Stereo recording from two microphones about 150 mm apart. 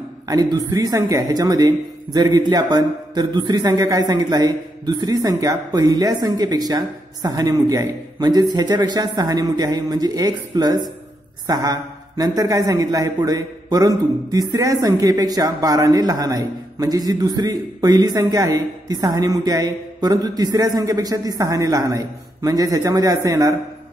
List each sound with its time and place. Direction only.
0.3 s a man's voice: 25° right (ahead or behind)